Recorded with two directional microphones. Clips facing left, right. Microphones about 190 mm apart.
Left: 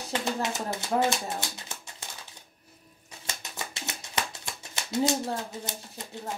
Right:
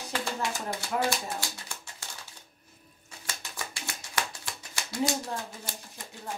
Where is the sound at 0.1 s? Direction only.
20° left (ahead or behind).